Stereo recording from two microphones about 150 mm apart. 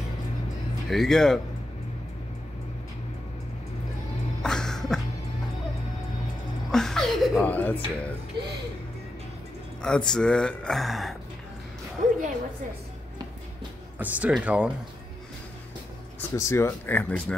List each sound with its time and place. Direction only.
0.8 s speech: centre (ahead or behind)
4.4 s music: 5° left (ahead or behind)
6.7 s chuckle: 5° left (ahead or behind)
7.4 s speech: 10° left (ahead or behind)
9.8 s speech: 5° left (ahead or behind)
13.9 s speech: 10° right (ahead or behind)
16.2 s speech: 20° left (ahead or behind)